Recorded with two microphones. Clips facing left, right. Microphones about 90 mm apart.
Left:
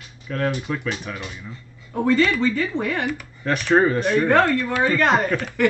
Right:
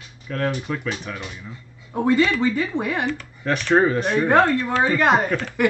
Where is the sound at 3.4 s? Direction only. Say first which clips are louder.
Even; centre (ahead or behind).